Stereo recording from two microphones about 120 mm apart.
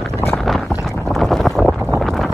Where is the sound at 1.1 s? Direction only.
5° left (ahead or behind).